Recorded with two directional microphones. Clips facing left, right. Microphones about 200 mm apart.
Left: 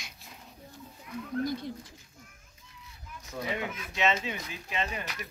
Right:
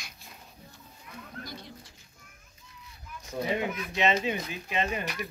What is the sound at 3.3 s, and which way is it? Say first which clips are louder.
Speech: right 4 dB; 30° right (ahead or behind).